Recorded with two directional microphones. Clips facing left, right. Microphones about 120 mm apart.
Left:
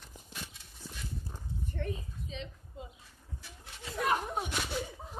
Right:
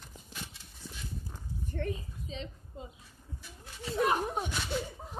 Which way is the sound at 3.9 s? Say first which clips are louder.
Right 2 dB; 25° right (ahead or behind).